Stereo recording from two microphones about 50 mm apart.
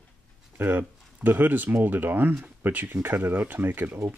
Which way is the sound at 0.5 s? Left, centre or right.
Right.